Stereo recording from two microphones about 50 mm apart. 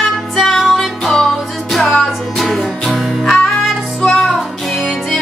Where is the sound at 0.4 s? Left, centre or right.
Centre.